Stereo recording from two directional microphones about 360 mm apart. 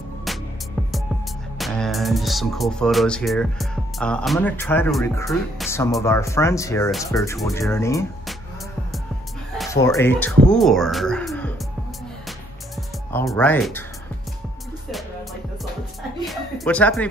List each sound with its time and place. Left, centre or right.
1.6 s speech: centre
9.6 s speech: centre
12.3 s music: centre
16.3 s music: centre